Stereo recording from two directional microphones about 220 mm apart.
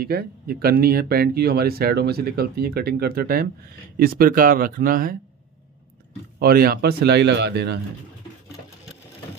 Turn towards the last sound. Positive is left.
turn(degrees=-50)  # may be behind; listen again after turning